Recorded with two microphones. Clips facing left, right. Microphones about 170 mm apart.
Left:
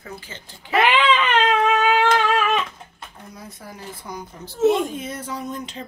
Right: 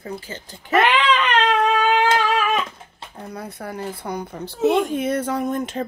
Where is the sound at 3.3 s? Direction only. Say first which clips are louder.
Right 9 dB; 65° right (ahead or behind).